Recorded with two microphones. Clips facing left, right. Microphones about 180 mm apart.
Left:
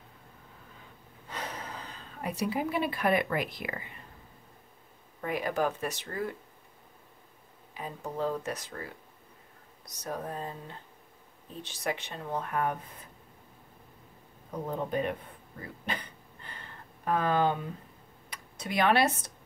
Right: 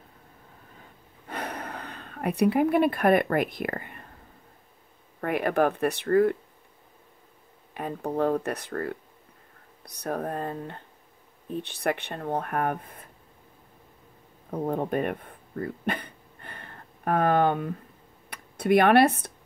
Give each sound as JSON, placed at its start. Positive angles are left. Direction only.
{"t": 1.3, "sound": "speech", "side_deg": -60}
{"t": 5.2, "sound": "speech", "side_deg": -60}
{"t": 7.7, "sound": "speech", "side_deg": -60}
{"t": 14.5, "sound": "throat clearing", "side_deg": -55}
{"t": 18.3, "sound": "speech", "side_deg": -55}